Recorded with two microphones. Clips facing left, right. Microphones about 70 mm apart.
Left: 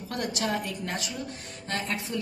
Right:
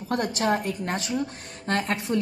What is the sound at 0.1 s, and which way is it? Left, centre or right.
A woman's voice, right.